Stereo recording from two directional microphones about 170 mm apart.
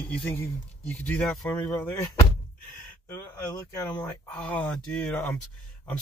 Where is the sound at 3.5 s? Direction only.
20° left (ahead or behind).